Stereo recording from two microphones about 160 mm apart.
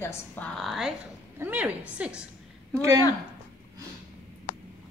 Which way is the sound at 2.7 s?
20° right (ahead or behind).